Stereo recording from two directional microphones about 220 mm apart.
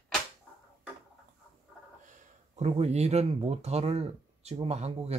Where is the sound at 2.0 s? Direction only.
30° right (ahead or behind).